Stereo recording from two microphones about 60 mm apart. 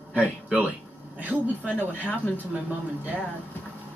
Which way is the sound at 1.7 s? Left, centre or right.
Left.